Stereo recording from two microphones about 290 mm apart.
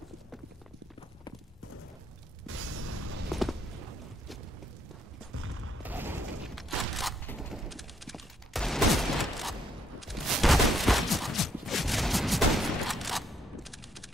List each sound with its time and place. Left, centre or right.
2.4 s music: right
3.3 s walk: centre
5.3 s a sound: right
5.8 s fusillade: centre